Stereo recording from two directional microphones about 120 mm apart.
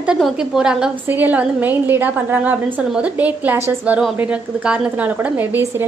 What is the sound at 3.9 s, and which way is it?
A woman's voice, centre (ahead or behind).